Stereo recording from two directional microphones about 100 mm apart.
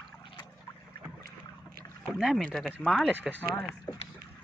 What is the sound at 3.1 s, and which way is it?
Speech, 15° right (ahead or behind).